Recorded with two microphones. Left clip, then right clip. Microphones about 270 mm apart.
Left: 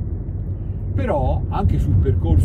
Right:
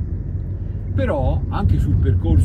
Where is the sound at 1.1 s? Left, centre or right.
Centre.